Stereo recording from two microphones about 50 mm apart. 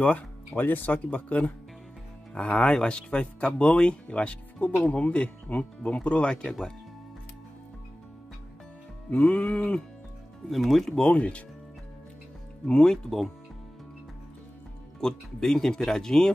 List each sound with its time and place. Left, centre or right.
0.0 s speech: left
2.5 s speech: centre
9.1 s speech: centre
10.5 s speech: centre
11.0 s speech: left
12.6 s speech: centre
15.0 s speech: centre